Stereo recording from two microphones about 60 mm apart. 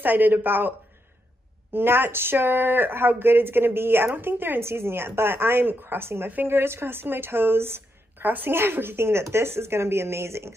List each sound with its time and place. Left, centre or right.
0.0 s speech: right